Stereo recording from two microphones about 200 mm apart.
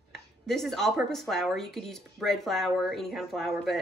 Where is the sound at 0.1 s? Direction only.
Centre (ahead or behind).